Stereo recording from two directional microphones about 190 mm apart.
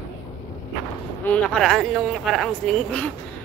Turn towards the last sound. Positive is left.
turn(degrees=5)  # may be behind; listen again after turning